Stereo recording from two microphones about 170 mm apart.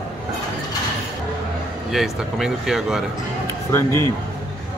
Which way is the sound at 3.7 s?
15° left (ahead or behind).